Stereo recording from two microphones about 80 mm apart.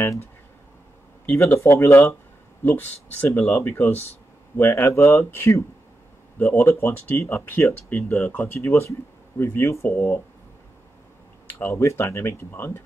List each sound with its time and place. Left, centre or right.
1.3 s speech: left
2.6 s speech: left
11.4 s speech: left